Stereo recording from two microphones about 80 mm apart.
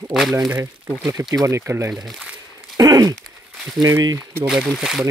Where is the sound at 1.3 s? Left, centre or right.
Right.